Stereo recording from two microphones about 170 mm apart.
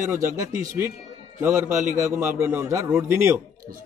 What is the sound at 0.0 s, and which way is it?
Speech, 15° right (ahead or behind).